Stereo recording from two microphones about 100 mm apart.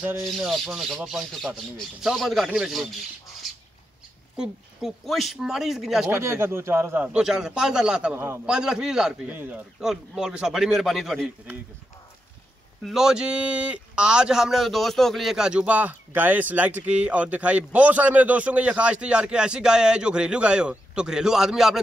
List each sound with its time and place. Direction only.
0.2 s speech: centre (ahead or behind)
4.4 s speech: centre (ahead or behind)
6.1 s speech: 25° right (ahead or behind)
7.1 s a man's voice: 5° right (ahead or behind)
9.3 s a man's voice: 20° right (ahead or behind)
9.8 s speech: 5° right (ahead or behind)
12.8 s a man's voice: 5° right (ahead or behind)